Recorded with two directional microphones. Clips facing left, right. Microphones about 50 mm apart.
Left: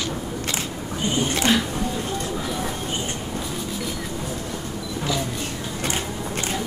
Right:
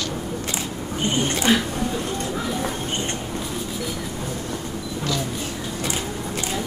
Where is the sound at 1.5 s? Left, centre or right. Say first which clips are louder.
Right 2 dB; centre.